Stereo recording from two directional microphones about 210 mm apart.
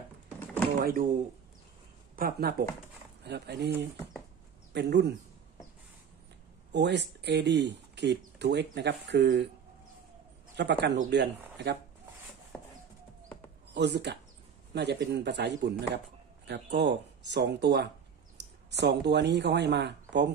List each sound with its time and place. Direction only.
2.1 s speech: 45° right (ahead or behind)
4.7 s speech: 55° right (ahead or behind)
6.7 s speech: 55° right (ahead or behind)
10.5 s speech: 55° right (ahead or behind)
13.7 s speech: 55° right (ahead or behind)